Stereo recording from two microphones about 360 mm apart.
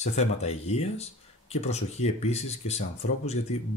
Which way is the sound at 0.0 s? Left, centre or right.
Centre.